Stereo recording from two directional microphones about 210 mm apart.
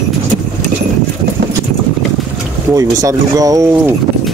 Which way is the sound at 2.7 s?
15° right (ahead or behind).